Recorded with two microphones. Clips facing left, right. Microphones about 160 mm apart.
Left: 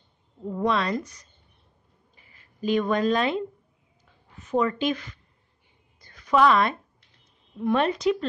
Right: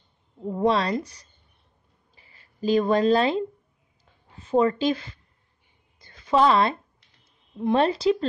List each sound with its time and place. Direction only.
0.5 s a woman's voice: 30° right (ahead or behind)
4.0 s a sound: 30° right (ahead or behind)
7.5 s a woman's voice: 30° right (ahead or behind)